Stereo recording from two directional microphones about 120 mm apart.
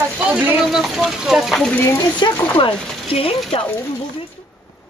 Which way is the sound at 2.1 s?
40° left (ahead or behind).